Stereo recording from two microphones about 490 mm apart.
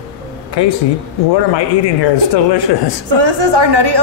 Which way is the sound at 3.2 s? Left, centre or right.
Right.